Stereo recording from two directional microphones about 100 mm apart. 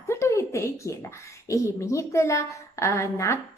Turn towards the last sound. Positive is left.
turn(degrees=30)  # may be behind; listen again after turning